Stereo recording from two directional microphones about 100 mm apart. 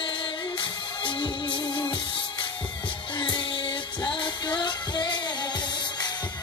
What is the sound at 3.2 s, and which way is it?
Music, 55° left (ahead or behind).